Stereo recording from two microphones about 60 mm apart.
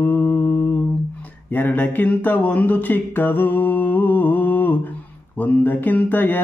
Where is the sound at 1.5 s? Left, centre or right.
Left.